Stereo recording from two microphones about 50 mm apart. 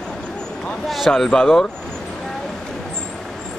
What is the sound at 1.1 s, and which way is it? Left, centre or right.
Speech, centre.